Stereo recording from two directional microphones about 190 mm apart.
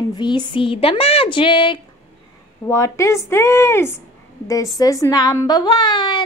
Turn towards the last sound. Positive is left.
turn(degrees=25)  # may be behind; listen again after turning